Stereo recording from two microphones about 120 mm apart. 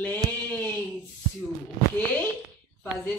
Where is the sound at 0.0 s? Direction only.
15° left (ahead or behind).